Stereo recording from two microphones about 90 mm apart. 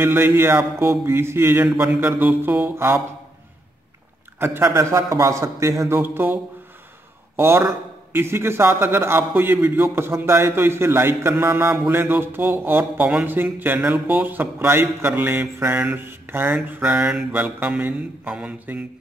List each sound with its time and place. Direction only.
0.0 s a man's voice: 25° right (ahead or behind)
4.6 s a man's voice: 35° right (ahead or behind)
16.9 s mantra: 5° right (ahead or behind)
17.3 s a man's voice: 20° right (ahead or behind)